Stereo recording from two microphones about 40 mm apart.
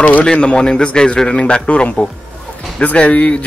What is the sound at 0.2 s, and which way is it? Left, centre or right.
A man's voice, left.